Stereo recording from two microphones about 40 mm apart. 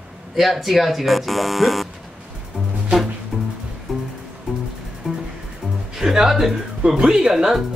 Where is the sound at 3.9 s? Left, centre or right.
Centre.